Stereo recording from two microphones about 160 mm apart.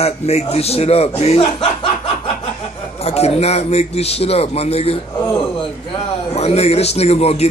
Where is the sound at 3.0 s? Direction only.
40° left (ahead or behind).